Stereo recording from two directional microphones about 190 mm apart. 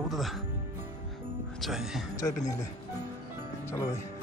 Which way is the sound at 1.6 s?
Centre (ahead or behind).